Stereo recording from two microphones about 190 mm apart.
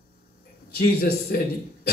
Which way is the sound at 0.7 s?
50° left (ahead or behind).